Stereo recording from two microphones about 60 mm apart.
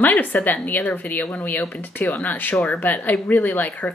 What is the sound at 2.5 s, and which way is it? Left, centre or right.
Speech, centre.